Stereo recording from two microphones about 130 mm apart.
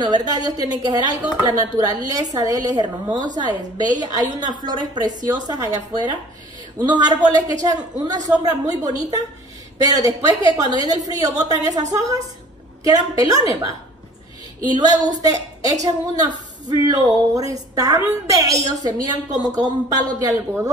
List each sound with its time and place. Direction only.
0.0 s a woman's voice: 30° right (ahead or behind)
10.0 s a woman's voice: 30° right (ahead or behind)